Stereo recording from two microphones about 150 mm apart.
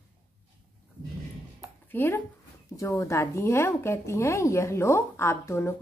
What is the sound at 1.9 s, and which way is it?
A woman's voice, 15° left (ahead or behind).